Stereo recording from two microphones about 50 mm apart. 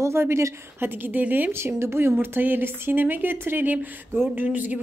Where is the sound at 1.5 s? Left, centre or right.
Right.